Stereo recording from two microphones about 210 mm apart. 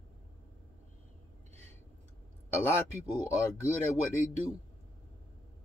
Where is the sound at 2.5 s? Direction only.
10° left (ahead or behind).